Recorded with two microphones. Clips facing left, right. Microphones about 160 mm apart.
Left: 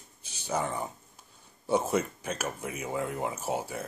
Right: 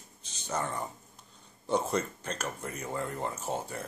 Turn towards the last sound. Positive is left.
turn(degrees=5)  # may be behind; listen again after turning